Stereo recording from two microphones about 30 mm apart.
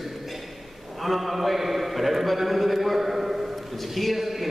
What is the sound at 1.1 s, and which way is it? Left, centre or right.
A man's voice, centre.